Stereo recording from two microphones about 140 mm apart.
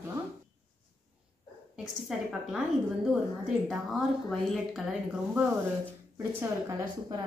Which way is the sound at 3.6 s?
Centre (ahead or behind).